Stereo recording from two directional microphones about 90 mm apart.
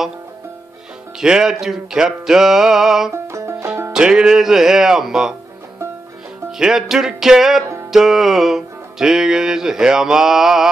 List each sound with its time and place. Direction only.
1.2 s music: 10° right (ahead or behind)
3.1 s music: 30° right (ahead or behind)
3.9 s music: 10° right (ahead or behind)
6.6 s music: 5° right (ahead or behind)